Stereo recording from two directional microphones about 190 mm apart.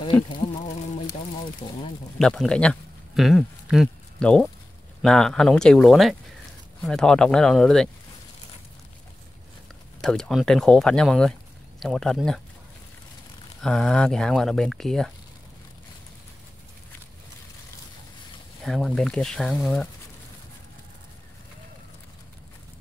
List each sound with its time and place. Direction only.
0.4 s a sound: 35° left (ahead or behind)
2.1 s speech: centre (ahead or behind)
10.0 s speech: 5° left (ahead or behind)
13.6 s speech: centre (ahead or behind)
18.6 s speech: 5° left (ahead or behind)